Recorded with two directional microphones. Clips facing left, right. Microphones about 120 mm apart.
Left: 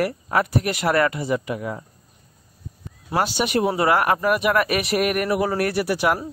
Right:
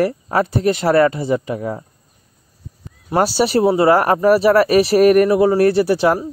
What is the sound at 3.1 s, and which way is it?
Speech, 35° right (ahead or behind).